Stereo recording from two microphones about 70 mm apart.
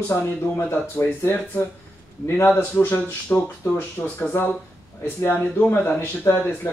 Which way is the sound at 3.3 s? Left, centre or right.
Left.